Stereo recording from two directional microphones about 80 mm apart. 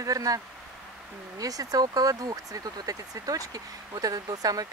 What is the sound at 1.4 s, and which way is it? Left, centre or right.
Speech, right.